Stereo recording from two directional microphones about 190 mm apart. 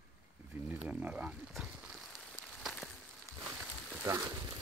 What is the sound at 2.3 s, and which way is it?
Rain on surface, centre (ahead or behind).